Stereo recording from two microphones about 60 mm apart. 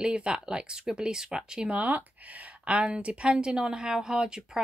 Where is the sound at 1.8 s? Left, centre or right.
Right.